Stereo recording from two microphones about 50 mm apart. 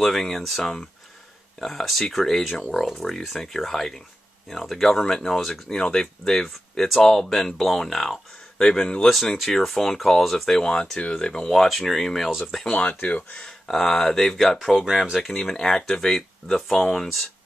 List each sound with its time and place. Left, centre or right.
0.0 s speech: centre
10.6 s speech: centre
13.0 s speech: left
13.5 s speech: centre
15.2 s speech: centre